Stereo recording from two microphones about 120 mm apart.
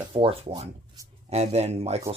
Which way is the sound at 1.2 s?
65° right (ahead or behind).